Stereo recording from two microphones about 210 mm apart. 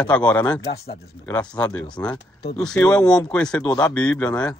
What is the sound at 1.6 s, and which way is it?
Speech, 5° left (ahead or behind).